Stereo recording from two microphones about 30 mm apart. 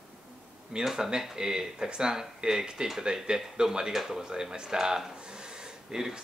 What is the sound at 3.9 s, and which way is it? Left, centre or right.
Speech, centre.